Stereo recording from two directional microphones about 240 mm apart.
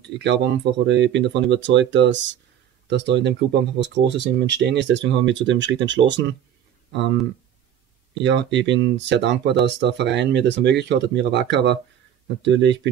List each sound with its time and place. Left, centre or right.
0.0 s speech: right
8.1 s speech: right